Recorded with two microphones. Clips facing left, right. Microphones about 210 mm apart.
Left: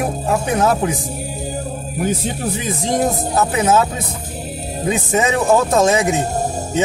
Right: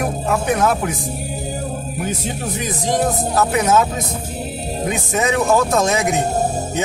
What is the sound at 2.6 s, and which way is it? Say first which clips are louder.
Speech: even; 25° left (ahead or behind).